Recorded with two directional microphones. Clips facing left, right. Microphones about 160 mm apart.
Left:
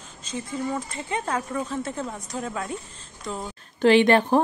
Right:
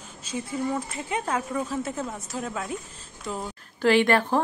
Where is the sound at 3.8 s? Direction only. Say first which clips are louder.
Left 3 dB; 20° left (ahead or behind).